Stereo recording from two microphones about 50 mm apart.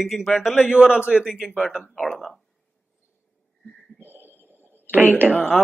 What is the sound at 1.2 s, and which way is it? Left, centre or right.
Speech, centre.